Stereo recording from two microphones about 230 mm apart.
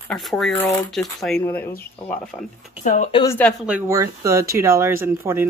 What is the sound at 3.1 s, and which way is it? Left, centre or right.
Speech, centre.